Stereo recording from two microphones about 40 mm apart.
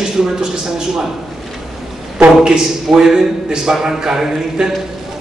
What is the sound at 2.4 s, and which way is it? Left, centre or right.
A man's voice, centre.